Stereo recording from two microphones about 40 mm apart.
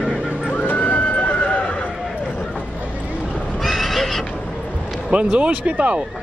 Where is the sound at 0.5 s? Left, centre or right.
Left.